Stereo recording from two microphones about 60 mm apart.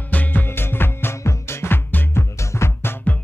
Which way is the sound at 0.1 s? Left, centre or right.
Left.